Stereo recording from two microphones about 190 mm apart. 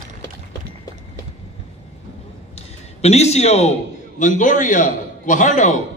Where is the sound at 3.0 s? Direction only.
35° left (ahead or behind).